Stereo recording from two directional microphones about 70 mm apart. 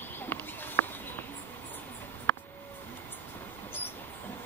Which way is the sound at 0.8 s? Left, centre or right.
Left.